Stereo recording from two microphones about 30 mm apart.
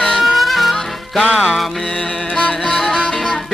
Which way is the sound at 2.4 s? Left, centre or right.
Left.